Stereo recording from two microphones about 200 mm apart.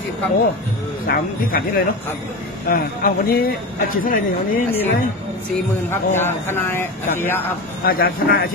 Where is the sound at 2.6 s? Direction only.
45° left (ahead or behind).